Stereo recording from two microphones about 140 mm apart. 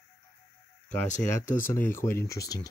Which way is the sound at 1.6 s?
15° left (ahead or behind).